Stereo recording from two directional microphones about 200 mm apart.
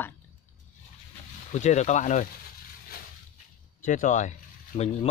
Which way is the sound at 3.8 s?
40° left (ahead or behind).